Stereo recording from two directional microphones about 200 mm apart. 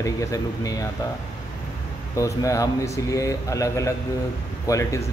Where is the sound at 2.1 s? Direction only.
15° left (ahead or behind).